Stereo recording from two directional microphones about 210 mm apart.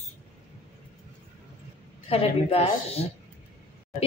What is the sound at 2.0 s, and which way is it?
A woman's voice, 30° left (ahead or behind).